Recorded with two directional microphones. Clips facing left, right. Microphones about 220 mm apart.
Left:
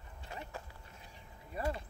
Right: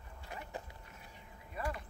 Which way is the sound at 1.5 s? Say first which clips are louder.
Left 3 dB; 30° left (ahead or behind).